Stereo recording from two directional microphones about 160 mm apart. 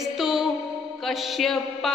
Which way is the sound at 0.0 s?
Centre (ahead or behind).